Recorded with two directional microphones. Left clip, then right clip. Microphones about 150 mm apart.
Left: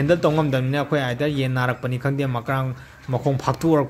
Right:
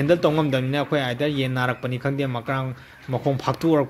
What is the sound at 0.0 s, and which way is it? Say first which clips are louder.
A man's voice: even; 15° right (ahead or behind).